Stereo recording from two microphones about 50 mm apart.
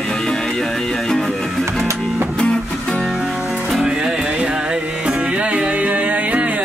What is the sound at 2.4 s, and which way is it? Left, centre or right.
Music, centre.